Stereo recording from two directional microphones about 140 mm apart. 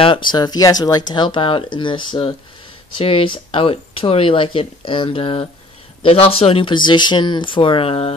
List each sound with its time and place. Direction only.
0.3 s speech: 30° left (ahead or behind)